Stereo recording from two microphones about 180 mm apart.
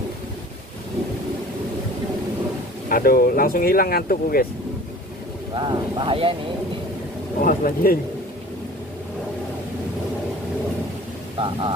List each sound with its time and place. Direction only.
2.9 s speech: 55° left (ahead or behind)
5.5 s speech: 25° right (ahead or behind)
7.4 s speech: 50° left (ahead or behind)
11.3 s speech: 30° right (ahead or behind)